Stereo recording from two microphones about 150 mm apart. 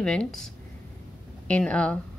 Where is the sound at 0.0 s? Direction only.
5° left (ahead or behind).